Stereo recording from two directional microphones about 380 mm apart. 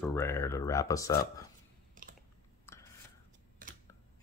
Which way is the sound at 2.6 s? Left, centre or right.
Centre.